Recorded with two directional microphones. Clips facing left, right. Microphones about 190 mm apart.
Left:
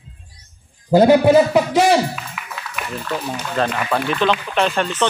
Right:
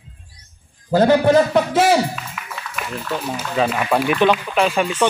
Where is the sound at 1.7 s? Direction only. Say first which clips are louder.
Left 1 dB; 5° right (ahead or behind).